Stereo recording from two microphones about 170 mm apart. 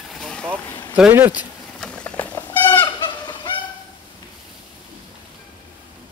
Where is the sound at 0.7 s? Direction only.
25° left (ahead or behind).